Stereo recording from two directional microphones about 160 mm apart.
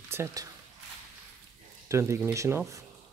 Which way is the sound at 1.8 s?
15° right (ahead or behind).